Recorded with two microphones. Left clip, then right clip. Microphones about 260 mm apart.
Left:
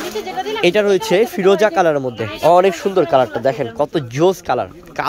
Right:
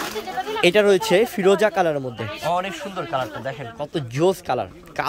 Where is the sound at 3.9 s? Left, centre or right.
Centre.